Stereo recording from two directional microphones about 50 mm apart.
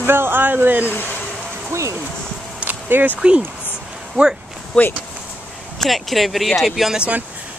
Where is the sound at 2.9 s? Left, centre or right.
Right.